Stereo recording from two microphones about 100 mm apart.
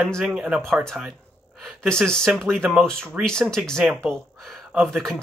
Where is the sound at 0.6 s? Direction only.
5° left (ahead or behind).